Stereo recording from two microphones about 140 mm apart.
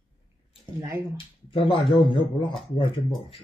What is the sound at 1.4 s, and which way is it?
A man's voice, 35° left (ahead or behind).